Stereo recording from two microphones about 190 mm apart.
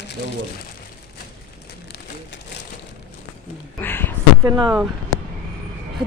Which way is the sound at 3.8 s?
10° left (ahead or behind).